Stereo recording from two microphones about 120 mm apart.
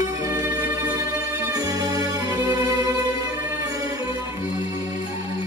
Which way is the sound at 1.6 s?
30° right (ahead or behind).